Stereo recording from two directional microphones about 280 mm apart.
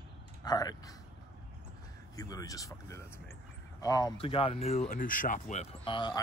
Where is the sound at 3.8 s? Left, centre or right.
Centre.